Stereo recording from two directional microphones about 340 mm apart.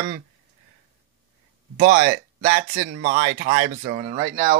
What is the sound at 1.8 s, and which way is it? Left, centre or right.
Speech, right.